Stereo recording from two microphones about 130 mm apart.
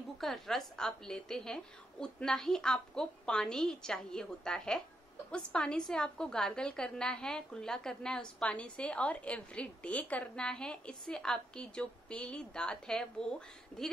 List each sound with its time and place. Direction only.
0.2 s a woman's voice: centre (ahead or behind)